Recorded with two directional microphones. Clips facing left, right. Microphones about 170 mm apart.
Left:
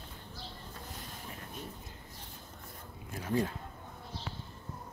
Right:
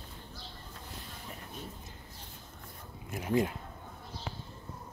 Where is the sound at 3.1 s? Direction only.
15° right (ahead or behind).